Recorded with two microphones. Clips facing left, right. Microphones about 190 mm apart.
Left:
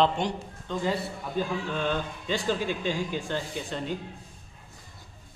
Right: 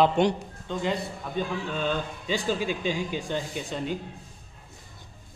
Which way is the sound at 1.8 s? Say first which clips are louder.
Even; 10° right (ahead or behind).